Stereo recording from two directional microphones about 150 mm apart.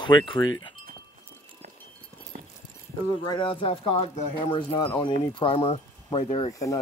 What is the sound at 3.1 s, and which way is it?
Speech, 35° left (ahead or behind).